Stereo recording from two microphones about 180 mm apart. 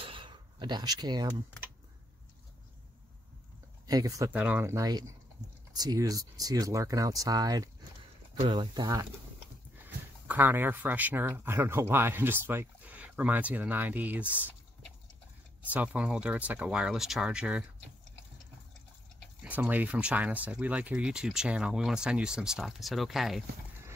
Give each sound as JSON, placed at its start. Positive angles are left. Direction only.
{"t": 0.0, "sound": "a sound", "side_deg": -30}
{"t": 3.8, "sound": "speech", "side_deg": -20}
{"t": 10.2, "sound": "speech", "side_deg": -10}
{"t": 15.7, "sound": "speech", "side_deg": -5}
{"t": 19.4, "sound": "speech", "side_deg": -10}